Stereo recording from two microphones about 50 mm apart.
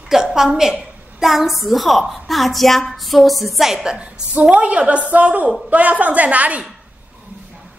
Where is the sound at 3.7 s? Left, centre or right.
Centre.